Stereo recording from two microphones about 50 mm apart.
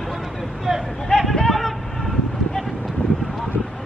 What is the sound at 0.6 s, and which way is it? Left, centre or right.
Hubbub, centre.